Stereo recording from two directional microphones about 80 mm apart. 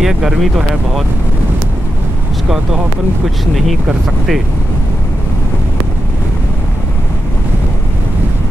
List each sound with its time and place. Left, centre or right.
0.0 s speech: centre
3.5 s speech: centre